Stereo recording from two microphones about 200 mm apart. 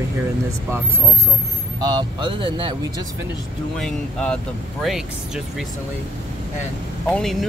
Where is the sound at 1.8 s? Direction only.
20° right (ahead or behind).